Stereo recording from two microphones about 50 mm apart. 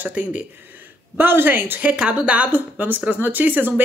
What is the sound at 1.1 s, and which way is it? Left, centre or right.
Speech, right.